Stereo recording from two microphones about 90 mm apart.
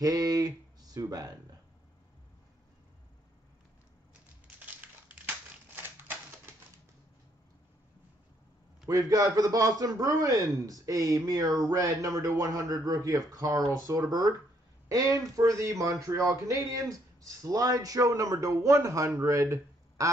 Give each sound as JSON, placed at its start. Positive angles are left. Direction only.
{"t": 0.0, "sound": "speech", "side_deg": -40}
{"t": 5.8, "sound": "typewriter", "side_deg": -25}
{"t": 8.8, "sound": "speech", "side_deg": -40}
{"t": 20.0, "sound": "quack", "side_deg": -35}